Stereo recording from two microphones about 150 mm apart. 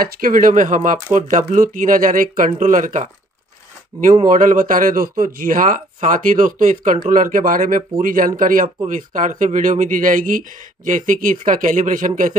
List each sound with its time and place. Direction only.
0.0 s speech: 70° right (ahead or behind)
4.2 s speech: 60° right (ahead or behind)